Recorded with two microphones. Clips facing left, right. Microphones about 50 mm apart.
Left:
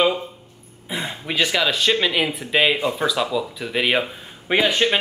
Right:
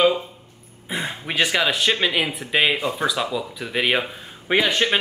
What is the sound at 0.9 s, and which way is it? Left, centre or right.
Speech, centre.